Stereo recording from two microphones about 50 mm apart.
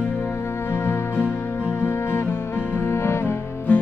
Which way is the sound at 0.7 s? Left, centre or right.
Left.